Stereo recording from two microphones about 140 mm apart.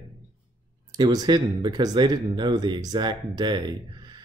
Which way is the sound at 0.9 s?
30° right (ahead or behind).